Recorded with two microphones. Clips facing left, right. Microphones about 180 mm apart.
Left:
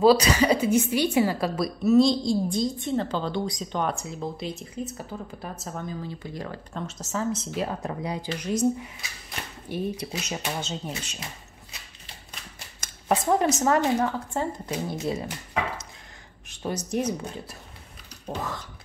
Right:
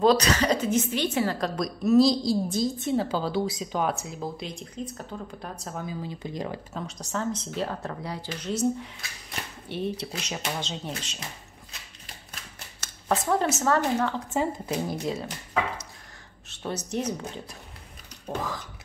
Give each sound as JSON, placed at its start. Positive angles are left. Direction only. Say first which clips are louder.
{"t": 0.0, "sound": "a woman's voice", "louder": "left 3 dB", "side_deg": 10}
{"t": 5.9, "sound": "speech", "louder": "even", "side_deg": -15}
{"t": 6.7, "sound": "speech", "louder": "left 1 dB", "side_deg": 0}
{"t": 12.8, "sound": "a sound", "louder": "left 2 dB", "side_deg": 15}
{"t": 13.6, "sound": "speech", "louder": "left 2 dB", "side_deg": 15}
{"t": 14.3, "sound": "a woman's voice", "louder": "right 2 dB", "side_deg": -5}
{"t": 15.0, "sound": "speech", "louder": "left 2 dB", "side_deg": 10}
{"t": 16.4, "sound": "speech", "louder": "left 2 dB", "side_deg": 10}
{"t": 18.2, "sound": "throat clearing", "louder": "right 1 dB", "side_deg": 0}